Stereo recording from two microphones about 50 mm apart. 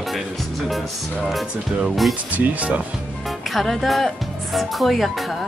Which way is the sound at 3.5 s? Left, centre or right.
Centre.